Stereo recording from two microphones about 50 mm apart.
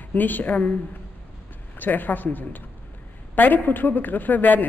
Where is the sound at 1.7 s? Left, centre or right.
Left.